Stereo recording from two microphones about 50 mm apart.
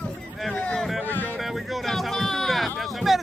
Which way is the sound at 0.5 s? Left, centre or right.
Centre.